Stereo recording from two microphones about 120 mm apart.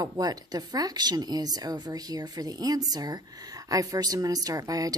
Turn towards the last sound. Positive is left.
turn(degrees=-30)  # may be behind; listen again after turning